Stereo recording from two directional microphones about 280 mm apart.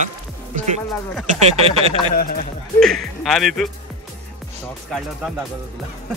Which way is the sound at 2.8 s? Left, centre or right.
Centre.